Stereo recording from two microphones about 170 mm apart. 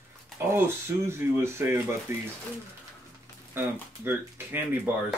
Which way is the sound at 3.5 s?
15° right (ahead or behind).